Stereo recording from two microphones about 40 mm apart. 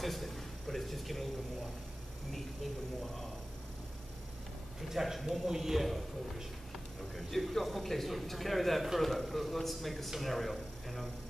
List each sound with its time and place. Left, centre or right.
0.0 s a man's voice: centre
4.8 s a man's voice: centre